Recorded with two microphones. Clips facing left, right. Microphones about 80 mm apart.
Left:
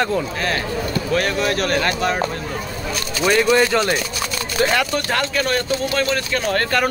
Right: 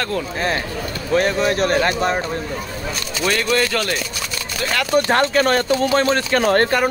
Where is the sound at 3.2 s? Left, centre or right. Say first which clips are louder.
Left 4 dB; centre.